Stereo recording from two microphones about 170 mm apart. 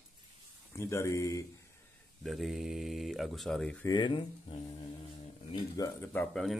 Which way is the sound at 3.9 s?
25° left (ahead or behind).